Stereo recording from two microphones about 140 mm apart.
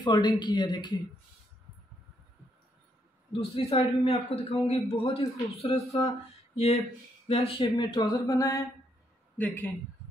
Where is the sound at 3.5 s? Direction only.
45° left (ahead or behind).